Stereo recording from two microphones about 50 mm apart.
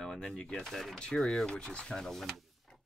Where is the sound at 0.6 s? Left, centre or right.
Centre.